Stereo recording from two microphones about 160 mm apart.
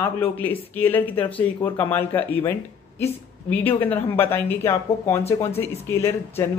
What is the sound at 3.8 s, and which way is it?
Speech, 10° left (ahead or behind).